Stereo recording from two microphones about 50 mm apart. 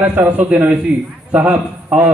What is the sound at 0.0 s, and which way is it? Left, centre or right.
A man's voice, right.